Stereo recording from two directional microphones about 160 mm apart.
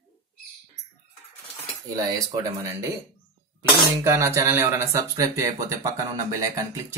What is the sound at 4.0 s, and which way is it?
Speech, 20° right (ahead or behind).